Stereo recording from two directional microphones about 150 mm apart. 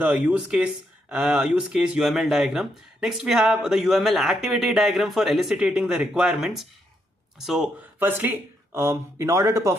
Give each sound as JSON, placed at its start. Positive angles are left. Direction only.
{"t": 0.0, "sound": "speech", "side_deg": -10}
{"t": 8.0, "sound": "speech", "side_deg": -15}